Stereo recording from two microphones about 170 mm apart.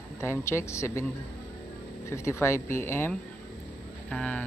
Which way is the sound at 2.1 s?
15° left (ahead or behind).